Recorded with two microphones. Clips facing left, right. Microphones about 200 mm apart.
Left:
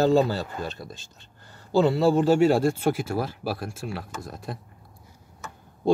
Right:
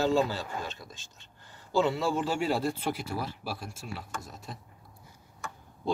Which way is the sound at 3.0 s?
55° left (ahead or behind).